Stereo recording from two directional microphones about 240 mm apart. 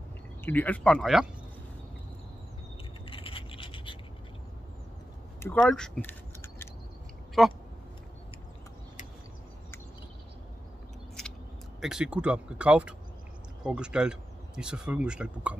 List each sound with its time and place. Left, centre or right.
0.5 s speech: centre
3.1 s scratch: left
5.4 s a sound: centre
7.4 s speech: centre
11.8 s speech: centre